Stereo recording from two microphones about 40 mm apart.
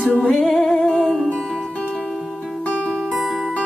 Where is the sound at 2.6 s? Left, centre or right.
Left.